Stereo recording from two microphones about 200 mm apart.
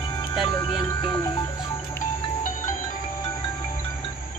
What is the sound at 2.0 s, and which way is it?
Music, 40° left (ahead or behind).